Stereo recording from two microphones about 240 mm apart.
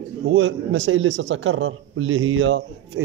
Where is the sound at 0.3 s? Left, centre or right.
Right.